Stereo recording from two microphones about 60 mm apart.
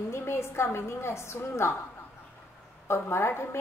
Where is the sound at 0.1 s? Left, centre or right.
Left.